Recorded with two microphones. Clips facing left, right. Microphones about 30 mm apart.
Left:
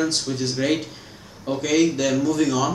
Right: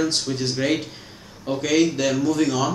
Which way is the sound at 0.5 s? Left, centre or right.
Centre.